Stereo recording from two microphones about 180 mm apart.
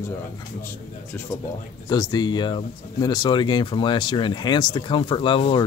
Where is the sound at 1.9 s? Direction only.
20° left (ahead or behind).